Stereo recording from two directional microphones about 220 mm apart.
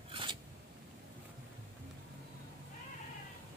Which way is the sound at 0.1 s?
25° right (ahead or behind).